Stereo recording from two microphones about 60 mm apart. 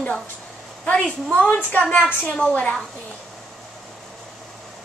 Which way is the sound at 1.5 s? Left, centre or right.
Left.